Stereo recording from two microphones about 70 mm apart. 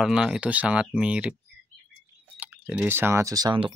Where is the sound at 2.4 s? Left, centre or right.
Centre.